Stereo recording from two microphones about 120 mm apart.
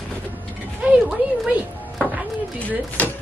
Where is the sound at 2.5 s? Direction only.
10° left (ahead or behind).